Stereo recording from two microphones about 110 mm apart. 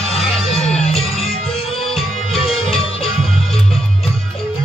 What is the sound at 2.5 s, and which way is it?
Music, 60° left (ahead or behind).